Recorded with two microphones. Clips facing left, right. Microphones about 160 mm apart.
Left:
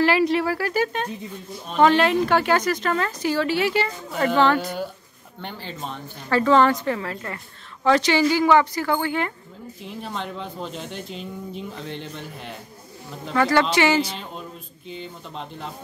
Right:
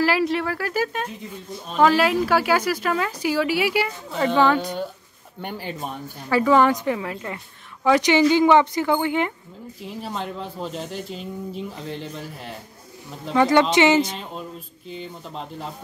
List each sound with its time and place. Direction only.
0.0 s a woman's voice: centre (ahead or behind)
4.1 s speech: 5° left (ahead or behind)
4.4 s a woman's voice: 10° right (ahead or behind)
9.8 s speech: 5° right (ahead or behind)
13.3 s speech: 15° right (ahead or behind)
15.0 s speech: centre (ahead or behind)